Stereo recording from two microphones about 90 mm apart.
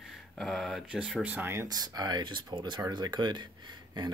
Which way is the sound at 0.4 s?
Centre (ahead or behind).